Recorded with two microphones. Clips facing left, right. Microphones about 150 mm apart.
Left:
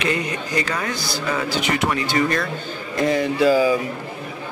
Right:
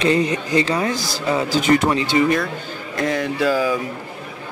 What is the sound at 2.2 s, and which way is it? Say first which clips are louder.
Speech: right 3 dB; 10° right (ahead or behind).